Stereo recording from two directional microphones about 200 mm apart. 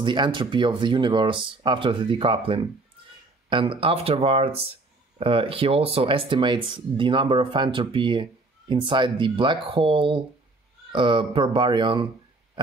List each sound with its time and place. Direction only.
0.0 s speech: 25° right (ahead or behind)